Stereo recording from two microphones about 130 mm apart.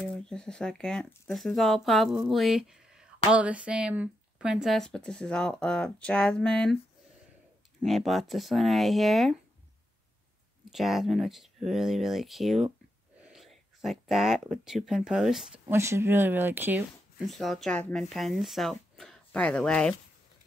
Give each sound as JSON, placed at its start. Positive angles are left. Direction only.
{"t": 0.2, "sound": "speech", "side_deg": 5}
{"t": 7.8, "sound": "speech", "side_deg": 0}
{"t": 10.7, "sound": "speech", "side_deg": 0}
{"t": 15.7, "sound": "speech", "side_deg": -20}
{"t": 17.2, "sound": "speech", "side_deg": 0}